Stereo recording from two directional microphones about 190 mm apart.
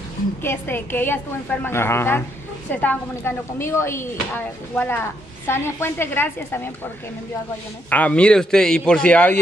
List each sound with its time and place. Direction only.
0.4 s a woman's voice: 10° left (ahead or behind)
7.9 s a man's voice: 5° left (ahead or behind)